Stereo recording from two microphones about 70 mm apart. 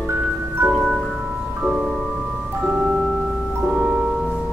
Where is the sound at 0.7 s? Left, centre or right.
Centre.